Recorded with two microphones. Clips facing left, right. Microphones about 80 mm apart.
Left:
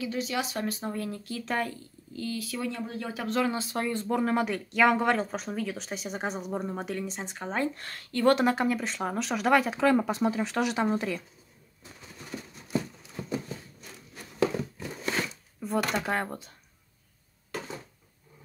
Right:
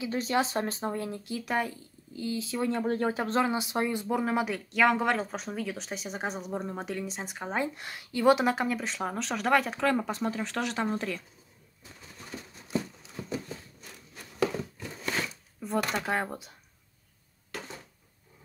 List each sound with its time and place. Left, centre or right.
0.1 s speech: right
2.7 s speech: right
3.5 s speech: centre
12.7 s a sound: centre
15.9 s speech: centre